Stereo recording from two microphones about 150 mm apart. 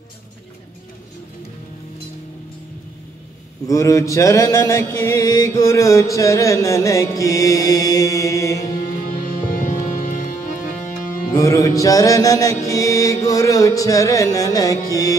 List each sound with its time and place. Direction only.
3.6 s mantra: 20° left (ahead or behind)
8.7 s music: 65° left (ahead or behind)
11.3 s mantra: 20° left (ahead or behind)